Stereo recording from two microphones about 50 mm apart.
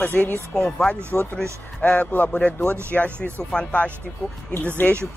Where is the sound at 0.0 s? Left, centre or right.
Left.